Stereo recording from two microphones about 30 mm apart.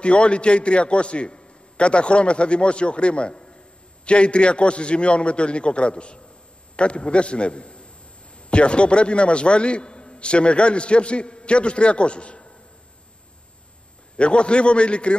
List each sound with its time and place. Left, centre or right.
0.0 s a man's voice: left
14.1 s a man's voice: left